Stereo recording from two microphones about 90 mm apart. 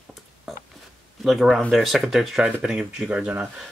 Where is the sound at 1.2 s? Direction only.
Centre (ahead or behind).